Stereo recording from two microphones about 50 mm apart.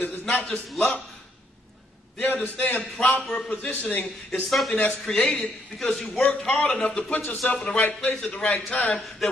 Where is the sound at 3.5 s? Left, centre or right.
Left.